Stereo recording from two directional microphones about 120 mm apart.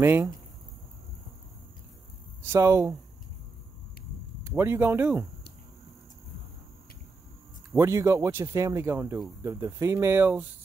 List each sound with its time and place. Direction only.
0.0 s speech: 20° right (ahead or behind)
2.4 s speech: 25° right (ahead or behind)
4.5 s speech: 20° right (ahead or behind)
7.7 s speech: 25° right (ahead or behind)